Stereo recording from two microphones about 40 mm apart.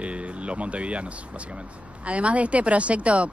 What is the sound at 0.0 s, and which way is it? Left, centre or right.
Speech, right.